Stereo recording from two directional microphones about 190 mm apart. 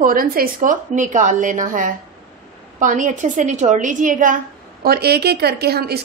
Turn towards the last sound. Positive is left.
turn(degrees=-55)  # may be behind; listen again after turning